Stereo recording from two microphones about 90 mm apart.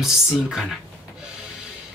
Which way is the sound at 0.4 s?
5° right (ahead or behind).